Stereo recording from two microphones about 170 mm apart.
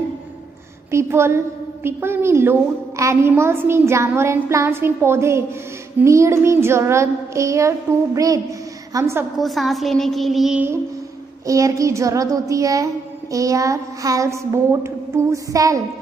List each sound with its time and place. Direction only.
0.9 s a woman's voice: 15° right (ahead or behind)
9.4 s a woman's voice: centre (ahead or behind)
11.4 s speech: 20° right (ahead or behind)